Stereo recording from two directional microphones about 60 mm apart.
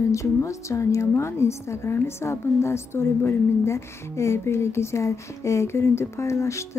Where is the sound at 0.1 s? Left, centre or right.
Left.